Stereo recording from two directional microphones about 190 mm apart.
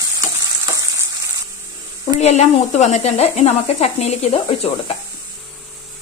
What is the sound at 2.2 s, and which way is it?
Speech, 35° left (ahead or behind).